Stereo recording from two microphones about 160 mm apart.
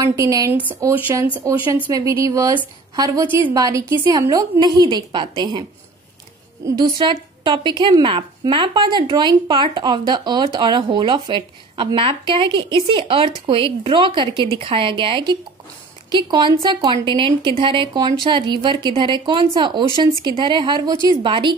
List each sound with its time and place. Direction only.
0.0 s a woman's voice: 20° right (ahead or behind)